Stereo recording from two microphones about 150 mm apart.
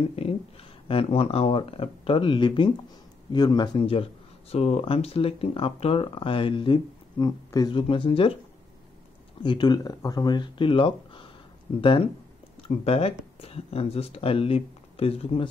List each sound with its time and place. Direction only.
0.1 s speech: 40° left (ahead or behind)
9.4 s speech: 30° left (ahead or behind)